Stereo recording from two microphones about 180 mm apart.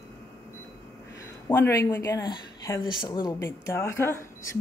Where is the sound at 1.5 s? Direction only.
15° left (ahead or behind).